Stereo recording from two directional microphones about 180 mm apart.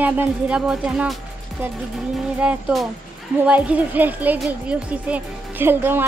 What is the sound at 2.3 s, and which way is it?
Speech, 5° right (ahead or behind).